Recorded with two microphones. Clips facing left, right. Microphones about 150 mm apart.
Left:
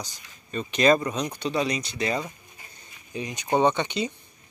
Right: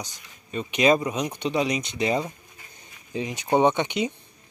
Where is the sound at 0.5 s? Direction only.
10° right (ahead or behind).